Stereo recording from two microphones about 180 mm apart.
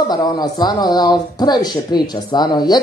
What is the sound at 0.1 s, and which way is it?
Speech, 25° left (ahead or behind).